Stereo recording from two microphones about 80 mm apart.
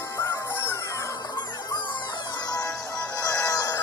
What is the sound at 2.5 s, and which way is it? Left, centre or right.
Music, left.